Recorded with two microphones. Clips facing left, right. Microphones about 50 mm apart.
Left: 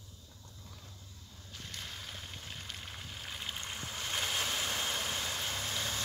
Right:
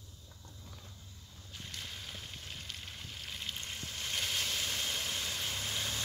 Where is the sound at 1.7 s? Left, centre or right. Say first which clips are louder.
Left 1 dB; centre.